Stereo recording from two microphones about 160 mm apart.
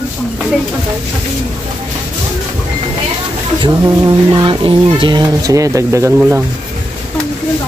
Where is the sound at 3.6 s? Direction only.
30° right (ahead or behind).